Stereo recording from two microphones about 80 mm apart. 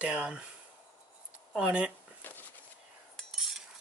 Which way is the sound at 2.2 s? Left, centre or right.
Left.